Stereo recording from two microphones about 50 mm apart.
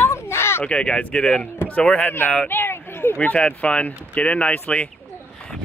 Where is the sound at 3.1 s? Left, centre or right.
Left.